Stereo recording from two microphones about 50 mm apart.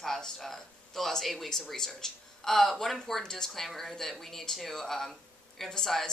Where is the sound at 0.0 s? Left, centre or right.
Centre.